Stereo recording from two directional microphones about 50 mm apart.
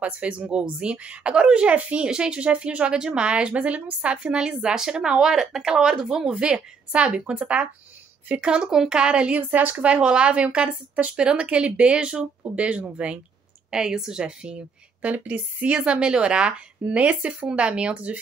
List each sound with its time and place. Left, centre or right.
0.0 s speech: right
9.5 s a woman's voice: right
9.8 s speech: right
13.7 s speech: centre